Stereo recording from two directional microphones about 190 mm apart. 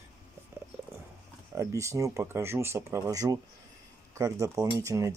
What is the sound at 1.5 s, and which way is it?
Speech, 15° right (ahead or behind).